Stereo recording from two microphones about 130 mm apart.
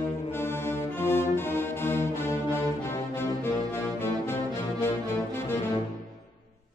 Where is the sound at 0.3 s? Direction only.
20° left (ahead or behind).